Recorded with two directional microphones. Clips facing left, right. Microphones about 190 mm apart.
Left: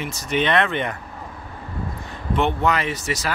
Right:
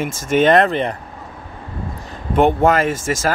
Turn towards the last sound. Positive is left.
turn(degrees=-50)  # may be behind; listen again after turning